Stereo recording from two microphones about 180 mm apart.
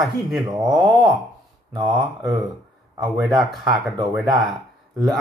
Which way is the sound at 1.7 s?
25° right (ahead or behind).